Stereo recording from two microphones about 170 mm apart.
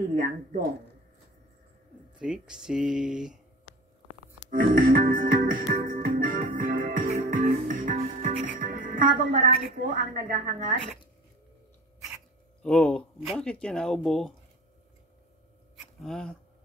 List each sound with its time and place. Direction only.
0.1 s speech: 50° right (ahead or behind)
2.1 s speech: 5° right (ahead or behind)
4.5 s music: 55° right (ahead or behind)
8.5 s a woman's voice: 50° right (ahead or behind)
12.6 s speech: 5° left (ahead or behind)
16.0 s speech: 5° left (ahead or behind)